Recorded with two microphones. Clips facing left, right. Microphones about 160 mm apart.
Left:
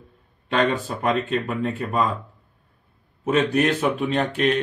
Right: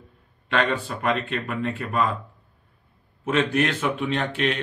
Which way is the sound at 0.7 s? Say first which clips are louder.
Left 2 dB; 40° left (ahead or behind).